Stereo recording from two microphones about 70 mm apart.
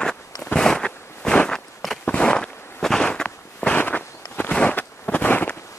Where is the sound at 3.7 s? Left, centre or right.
Left.